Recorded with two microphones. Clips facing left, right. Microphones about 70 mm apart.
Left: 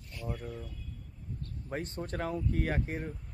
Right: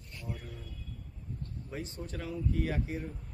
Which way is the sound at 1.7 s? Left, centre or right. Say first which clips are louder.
Left 5 dB; left.